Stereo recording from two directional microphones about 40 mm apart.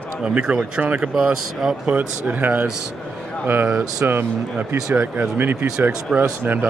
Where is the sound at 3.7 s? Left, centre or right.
Right.